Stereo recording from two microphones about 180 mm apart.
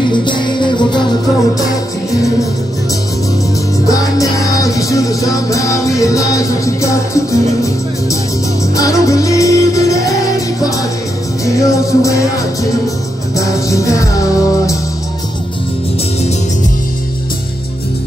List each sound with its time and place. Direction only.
0.1 s music: 25° left (ahead or behind)
3.8 s music: 20° left (ahead or behind)
11.4 s music: 20° left (ahead or behind)
13.7 s music: 15° left (ahead or behind)